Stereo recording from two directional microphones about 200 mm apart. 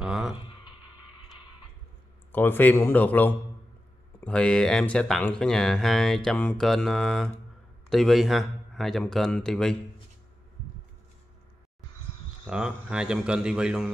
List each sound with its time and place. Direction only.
0.0 s a sound: 5° right (ahead or behind)
2.3 s a man's voice: 10° left (ahead or behind)
12.4 s speech: 5° right (ahead or behind)